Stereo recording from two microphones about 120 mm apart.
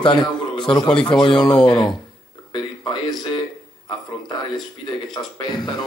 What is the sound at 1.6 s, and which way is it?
Speech, 40° left (ahead or behind).